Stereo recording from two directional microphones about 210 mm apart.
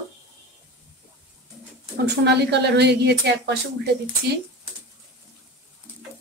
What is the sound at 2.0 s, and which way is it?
Speech, 50° right (ahead or behind).